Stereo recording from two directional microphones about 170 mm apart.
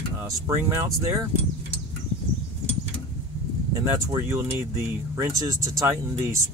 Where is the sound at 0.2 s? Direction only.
15° right (ahead or behind).